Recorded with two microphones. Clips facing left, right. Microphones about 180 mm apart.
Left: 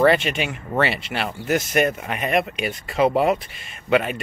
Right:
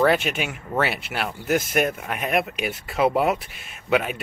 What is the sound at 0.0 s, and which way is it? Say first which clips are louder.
Speech: left 2 dB; 5° right (ahead or behind).